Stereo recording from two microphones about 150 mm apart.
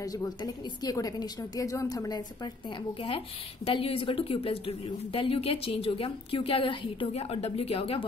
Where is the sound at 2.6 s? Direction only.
35° left (ahead or behind).